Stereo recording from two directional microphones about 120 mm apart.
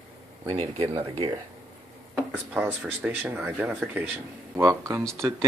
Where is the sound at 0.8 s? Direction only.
40° right (ahead or behind).